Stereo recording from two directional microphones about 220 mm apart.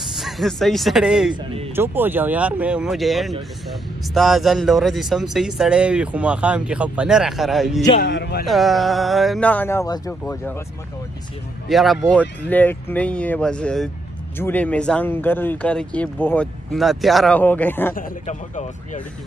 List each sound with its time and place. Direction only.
0.1 s speech: centre (ahead or behind)
1.3 s speech: 25° right (ahead or behind)
1.8 s speech: 10° right (ahead or behind)
8.0 s speech: 50° left (ahead or behind)
8.5 s speech: centre (ahead or behind)
11.7 s speech: centre (ahead or behind)
17.9 s a man's voice: 30° left (ahead or behind)